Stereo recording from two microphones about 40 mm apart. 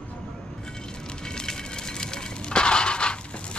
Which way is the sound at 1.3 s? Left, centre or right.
Centre.